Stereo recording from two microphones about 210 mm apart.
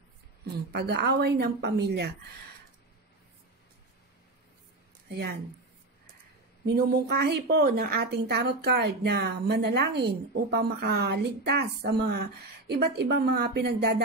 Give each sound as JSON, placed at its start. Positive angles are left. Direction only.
{"t": 0.7, "sound": "a woman's voice", "side_deg": -50}
{"t": 6.6, "sound": "a woman's voice", "side_deg": -50}